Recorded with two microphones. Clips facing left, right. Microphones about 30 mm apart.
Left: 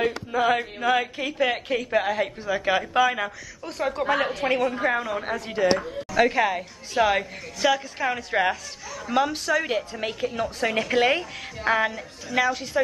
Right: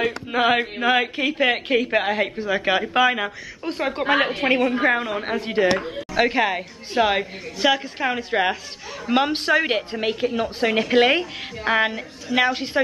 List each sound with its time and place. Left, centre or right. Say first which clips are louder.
0.3 s a woman's voice: right 5 dB; right
5.8 s speech: right 3 dB; right
6.1 s a woman's voice: right 1 dB; right
9.1 s a woman's voice: right 4 dB; right
9.9 s a woman's voice: right 5 dB; right
12.4 s a woman's voice: right 3 dB; right